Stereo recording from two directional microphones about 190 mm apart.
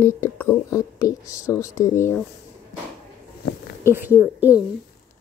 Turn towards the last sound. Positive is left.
turn(degrees=-10)  # may be behind; listen again after turning